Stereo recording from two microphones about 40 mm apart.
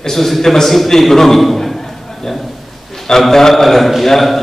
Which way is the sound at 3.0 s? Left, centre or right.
Centre.